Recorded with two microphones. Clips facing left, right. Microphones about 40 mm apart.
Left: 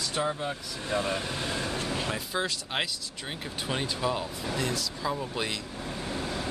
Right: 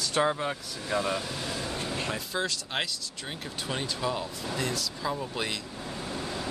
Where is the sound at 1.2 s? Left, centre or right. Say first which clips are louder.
Left 2 dB; left.